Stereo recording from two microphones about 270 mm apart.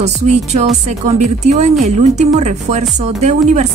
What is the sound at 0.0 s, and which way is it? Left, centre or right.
Speech, right.